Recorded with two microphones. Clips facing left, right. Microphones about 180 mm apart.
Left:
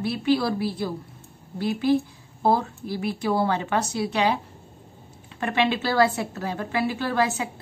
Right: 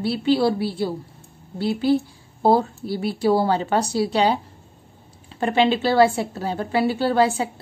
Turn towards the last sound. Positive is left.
turn(degrees=-30)  # may be behind; listen again after turning